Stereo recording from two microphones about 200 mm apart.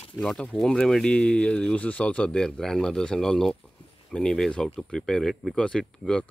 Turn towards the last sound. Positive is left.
turn(degrees=5)  # may be behind; listen again after turning